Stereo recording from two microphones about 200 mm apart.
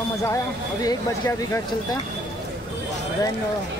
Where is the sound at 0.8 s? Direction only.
20° left (ahead or behind).